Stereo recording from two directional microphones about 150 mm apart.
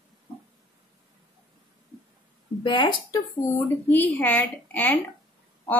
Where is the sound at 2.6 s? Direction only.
30° left (ahead or behind).